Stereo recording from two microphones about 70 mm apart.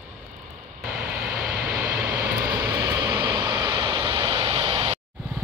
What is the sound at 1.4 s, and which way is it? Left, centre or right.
Vehicle, centre.